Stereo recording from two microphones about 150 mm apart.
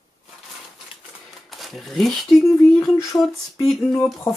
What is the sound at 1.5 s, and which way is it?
Speech, centre (ahead or behind).